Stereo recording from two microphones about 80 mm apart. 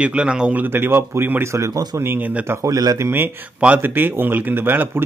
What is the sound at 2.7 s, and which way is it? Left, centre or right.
Speech, right.